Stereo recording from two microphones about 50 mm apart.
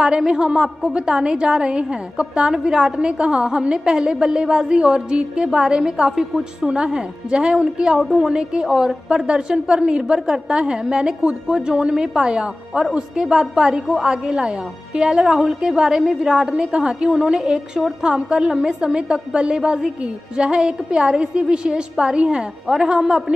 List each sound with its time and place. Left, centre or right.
0.3 s a woman's voice: centre
8.0 s a woman's voice: centre